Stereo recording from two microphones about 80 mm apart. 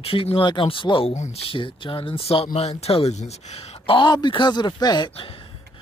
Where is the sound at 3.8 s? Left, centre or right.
Left.